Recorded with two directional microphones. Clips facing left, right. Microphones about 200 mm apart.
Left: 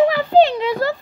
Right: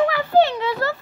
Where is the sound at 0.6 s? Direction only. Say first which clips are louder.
Left 4 dB; 15° left (ahead or behind).